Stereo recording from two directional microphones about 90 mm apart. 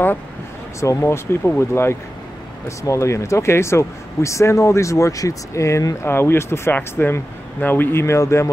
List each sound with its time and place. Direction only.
0.7 s speech: 30° left (ahead or behind)